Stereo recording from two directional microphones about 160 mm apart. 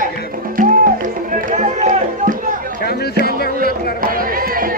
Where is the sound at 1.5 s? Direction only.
50° right (ahead or behind).